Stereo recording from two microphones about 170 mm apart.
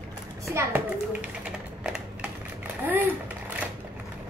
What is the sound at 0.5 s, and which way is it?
Speech, 15° right (ahead or behind).